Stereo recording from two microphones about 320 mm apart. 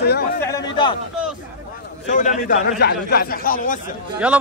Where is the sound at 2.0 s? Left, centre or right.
Left.